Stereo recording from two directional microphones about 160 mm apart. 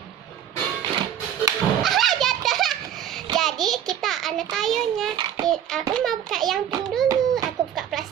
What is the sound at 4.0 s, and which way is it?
A child's voice, centre (ahead or behind).